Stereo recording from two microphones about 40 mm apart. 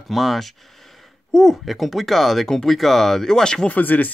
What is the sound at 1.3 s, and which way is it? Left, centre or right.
Speech, centre.